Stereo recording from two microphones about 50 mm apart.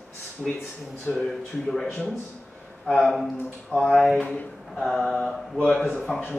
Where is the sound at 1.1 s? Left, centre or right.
Left.